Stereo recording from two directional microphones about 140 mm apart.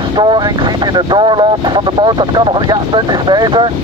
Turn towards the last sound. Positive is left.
turn(degrees=-35)  # may be behind; listen again after turning